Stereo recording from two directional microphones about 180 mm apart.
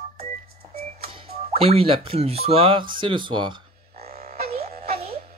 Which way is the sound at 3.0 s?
25° right (ahead or behind).